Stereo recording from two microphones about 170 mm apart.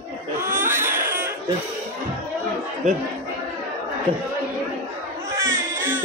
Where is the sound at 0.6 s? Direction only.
15° right (ahead or behind).